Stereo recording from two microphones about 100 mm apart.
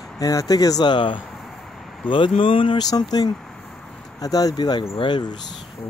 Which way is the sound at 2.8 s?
40° left (ahead or behind).